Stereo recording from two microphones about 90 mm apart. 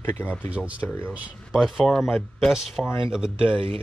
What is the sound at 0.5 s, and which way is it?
Speech, 15° right (ahead or behind).